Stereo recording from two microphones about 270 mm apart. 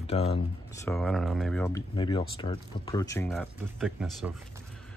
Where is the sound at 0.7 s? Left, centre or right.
Centre.